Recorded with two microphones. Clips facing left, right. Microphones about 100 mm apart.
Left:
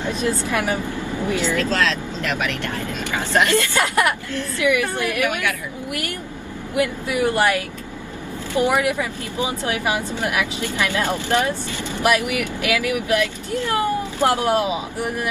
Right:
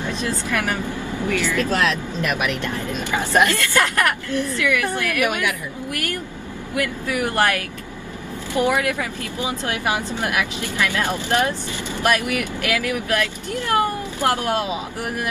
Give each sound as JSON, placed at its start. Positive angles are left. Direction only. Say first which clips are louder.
{"t": 0.0, "sound": "speech", "louder": "left 3 dB", "side_deg": 15}
{"t": 1.6, "sound": "speech", "louder": "even", "side_deg": -20}
{"t": 3.5, "sound": "speech", "louder": "left 1 dB", "side_deg": 15}
{"t": 6.7, "sound": "speech", "louder": "left 2 dB", "side_deg": 20}